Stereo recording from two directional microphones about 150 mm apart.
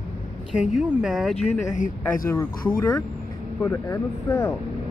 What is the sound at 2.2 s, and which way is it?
Speech, 20° left (ahead or behind).